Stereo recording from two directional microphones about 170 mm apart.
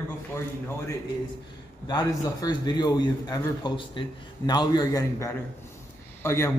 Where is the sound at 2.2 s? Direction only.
20° left (ahead or behind).